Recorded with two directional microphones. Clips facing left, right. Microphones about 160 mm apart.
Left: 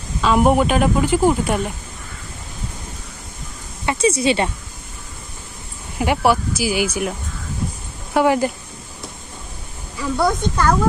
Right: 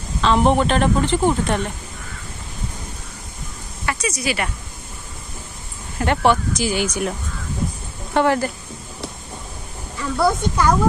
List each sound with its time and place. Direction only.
0.2 s speech: 10° left (ahead or behind)
3.8 s speech: 25° left (ahead or behind)
5.9 s speech: 10° left (ahead or behind)
10.1 s a woman's voice: 5° right (ahead or behind)